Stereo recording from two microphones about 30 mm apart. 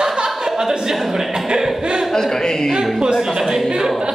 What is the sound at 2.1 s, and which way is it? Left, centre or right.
Speech, centre.